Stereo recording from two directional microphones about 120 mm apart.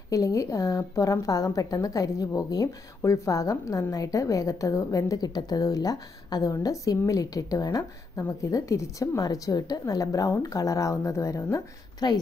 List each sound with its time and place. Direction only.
0.1 s a woman's voice: 30° left (ahead or behind)